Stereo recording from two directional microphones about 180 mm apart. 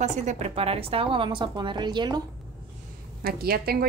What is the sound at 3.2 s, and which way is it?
Speech, 60° right (ahead or behind).